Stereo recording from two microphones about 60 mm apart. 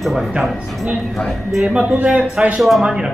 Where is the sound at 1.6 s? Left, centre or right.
Right.